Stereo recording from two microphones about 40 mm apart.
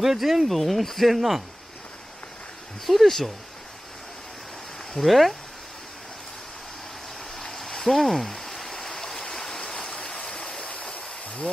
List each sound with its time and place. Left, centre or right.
0.0 s speech: centre
2.9 s speech: centre
4.9 s speech: centre
7.3 s stream: centre; by 11.5 s left